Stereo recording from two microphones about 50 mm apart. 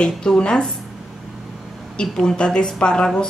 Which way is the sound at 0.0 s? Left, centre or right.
Centre.